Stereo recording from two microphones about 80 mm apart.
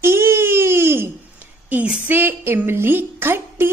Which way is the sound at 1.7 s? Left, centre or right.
Centre.